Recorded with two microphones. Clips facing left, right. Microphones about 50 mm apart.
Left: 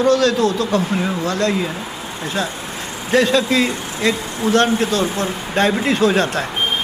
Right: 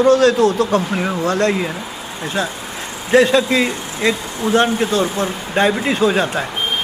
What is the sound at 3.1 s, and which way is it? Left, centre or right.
A man's voice, right.